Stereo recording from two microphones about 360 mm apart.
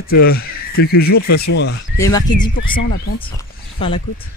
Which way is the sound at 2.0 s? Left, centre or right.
Centre.